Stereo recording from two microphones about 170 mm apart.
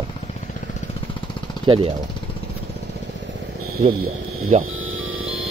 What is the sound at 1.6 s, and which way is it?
Speech, 30° right (ahead or behind).